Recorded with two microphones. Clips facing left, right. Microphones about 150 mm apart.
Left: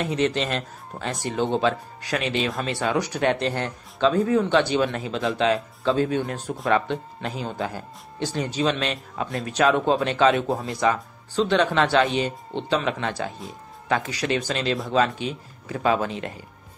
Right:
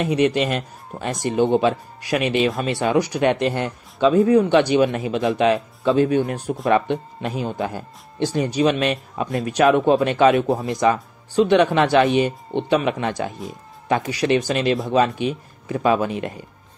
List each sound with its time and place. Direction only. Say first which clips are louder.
0.0 s speech: right 5 dB; 15° right (ahead or behind)